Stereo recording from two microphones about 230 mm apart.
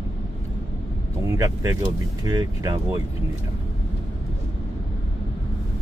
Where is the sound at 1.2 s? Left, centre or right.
Centre.